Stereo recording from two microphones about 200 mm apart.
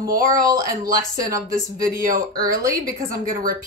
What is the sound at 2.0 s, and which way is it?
Speech, 45° right (ahead or behind).